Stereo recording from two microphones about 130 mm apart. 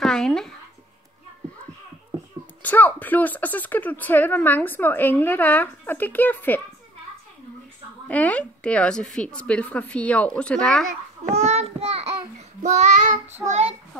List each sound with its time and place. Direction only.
0.0 s speech: 5° left (ahead or behind)
2.6 s speech: 15° left (ahead or behind)
8.1 s speech: 10° left (ahead or behind)
11.2 s child singing: 60° right (ahead or behind)
13.5 s a child's voice: 55° right (ahead or behind)